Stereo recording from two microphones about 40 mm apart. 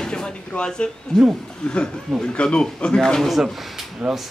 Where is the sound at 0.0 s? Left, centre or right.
Left.